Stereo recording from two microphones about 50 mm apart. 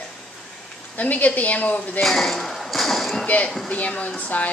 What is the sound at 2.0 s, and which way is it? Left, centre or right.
Ping, centre.